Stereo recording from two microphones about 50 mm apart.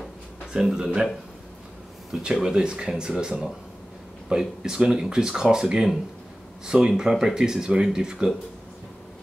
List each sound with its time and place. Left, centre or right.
0.5 s speech: centre
2.2 s speech: centre